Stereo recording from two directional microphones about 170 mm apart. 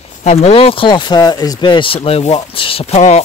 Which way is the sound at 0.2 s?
40° left (ahead or behind).